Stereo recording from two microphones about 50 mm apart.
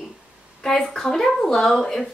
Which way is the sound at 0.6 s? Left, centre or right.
Centre.